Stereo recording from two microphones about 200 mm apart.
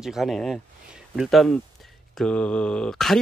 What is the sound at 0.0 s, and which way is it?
Speech, centre (ahead or behind).